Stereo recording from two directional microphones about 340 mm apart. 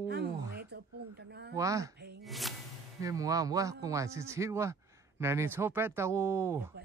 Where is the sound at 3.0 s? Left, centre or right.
Centre.